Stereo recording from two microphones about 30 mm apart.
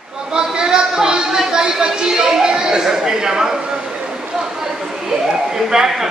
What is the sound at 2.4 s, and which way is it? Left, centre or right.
Speech, right.